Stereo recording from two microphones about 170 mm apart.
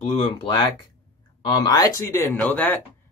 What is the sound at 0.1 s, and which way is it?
Speech, 40° left (ahead or behind).